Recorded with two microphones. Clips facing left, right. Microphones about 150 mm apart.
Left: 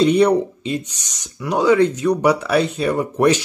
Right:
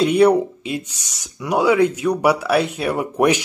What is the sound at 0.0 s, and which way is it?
Speech, 5° right (ahead or behind).